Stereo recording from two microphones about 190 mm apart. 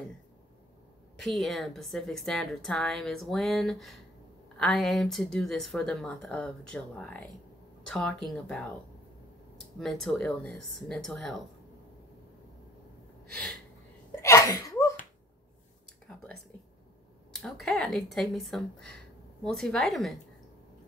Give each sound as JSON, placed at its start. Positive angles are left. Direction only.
{"t": 1.2, "sound": "a woman's voice", "side_deg": 0}
{"t": 9.8, "sound": "a woman's voice", "side_deg": 0}
{"t": 14.2, "sound": "sneeze", "side_deg": 15}
{"t": 17.3, "sound": "a woman's voice", "side_deg": 0}